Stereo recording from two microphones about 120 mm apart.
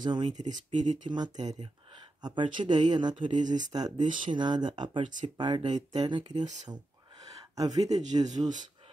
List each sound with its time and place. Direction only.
0.0 s speech: 40° right (ahead or behind)
3.4 s speech: 90° right
3.7 s speech: 35° right (ahead or behind)
6.4 s speech: 80° right
6.7 s a sound: 30° right (ahead or behind)
8.1 s speech: 35° right (ahead or behind)